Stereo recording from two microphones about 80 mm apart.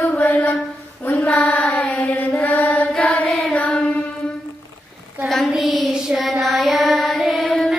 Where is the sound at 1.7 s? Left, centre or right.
Centre.